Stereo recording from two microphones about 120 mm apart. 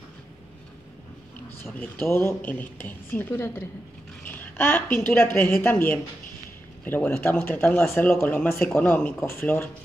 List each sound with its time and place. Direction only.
1.6 s speech: 20° left (ahead or behind)